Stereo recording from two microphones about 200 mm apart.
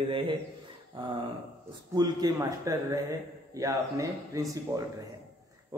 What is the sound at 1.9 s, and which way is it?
Speech, 20° right (ahead or behind).